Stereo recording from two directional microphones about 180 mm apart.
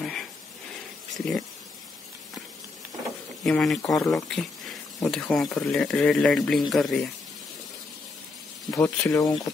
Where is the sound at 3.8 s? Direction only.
20° left (ahead or behind).